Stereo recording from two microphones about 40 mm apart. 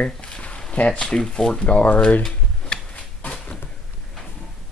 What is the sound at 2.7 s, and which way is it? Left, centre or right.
Tick-tock, left.